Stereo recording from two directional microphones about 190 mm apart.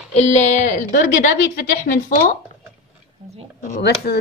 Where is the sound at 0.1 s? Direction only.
35° left (ahead or behind).